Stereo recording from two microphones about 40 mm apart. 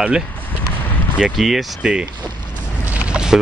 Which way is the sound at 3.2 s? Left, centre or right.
Centre.